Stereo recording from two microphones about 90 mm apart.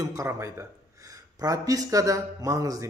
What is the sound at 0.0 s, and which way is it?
Speech, 35° right (ahead or behind).